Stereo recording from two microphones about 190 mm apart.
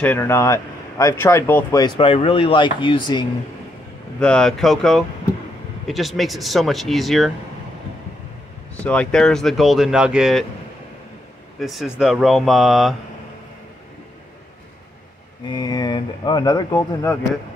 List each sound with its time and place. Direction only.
0.0 s speech: 10° left (ahead or behind)
4.2 s speech: 5° left (ahead or behind)
8.8 s speech: 5° left (ahead or behind)
11.6 s speech: centre (ahead or behind)
15.4 s speech: 20° left (ahead or behind)